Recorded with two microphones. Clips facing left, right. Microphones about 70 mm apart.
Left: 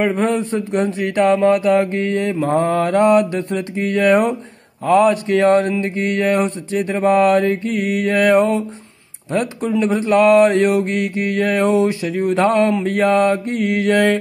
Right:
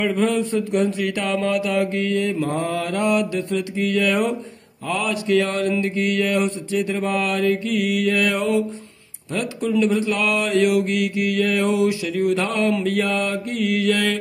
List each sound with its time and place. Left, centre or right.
0.0 s mantra: left